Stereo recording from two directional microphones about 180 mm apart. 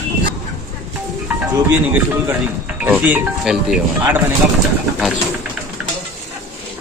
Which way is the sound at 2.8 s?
10° right (ahead or behind).